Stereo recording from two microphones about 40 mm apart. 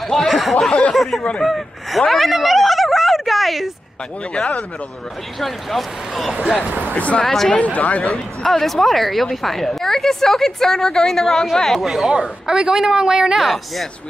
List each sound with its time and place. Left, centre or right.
0.3 s a sound: centre
0.9 s speech: centre
2.3 s a sound: centre
4.3 s speech: left
5.4 s speech: centre
6.9 s speech: left
7.2 s speech: centre
7.5 s speech: left
8.1 s speech: centre
11.8 s speech: centre
12.1 s speech: centre